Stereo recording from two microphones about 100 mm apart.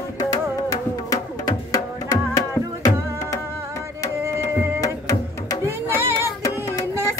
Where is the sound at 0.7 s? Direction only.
40° left (ahead or behind).